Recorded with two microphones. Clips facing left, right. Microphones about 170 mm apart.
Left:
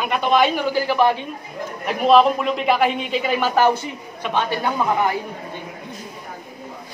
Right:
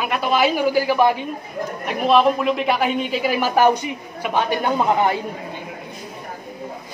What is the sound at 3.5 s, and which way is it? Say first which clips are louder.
A woman's voice: right 3 dB; 15° right (ahead or behind).